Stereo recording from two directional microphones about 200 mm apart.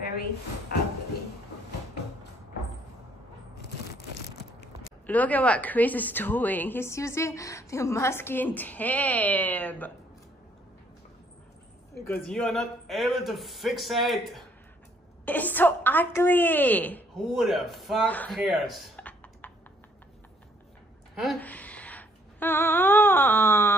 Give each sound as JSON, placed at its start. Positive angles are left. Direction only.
{"t": 5.0, "sound": "a woman's voice", "side_deg": 10}
{"t": 12.1, "sound": "a man's voice", "side_deg": 5}
{"t": 21.1, "sound": "speech", "side_deg": 0}